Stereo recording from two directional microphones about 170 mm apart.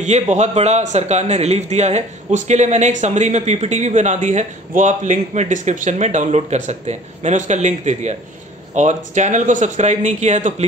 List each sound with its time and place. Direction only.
0.0 s a man's voice: 45° right (ahead or behind)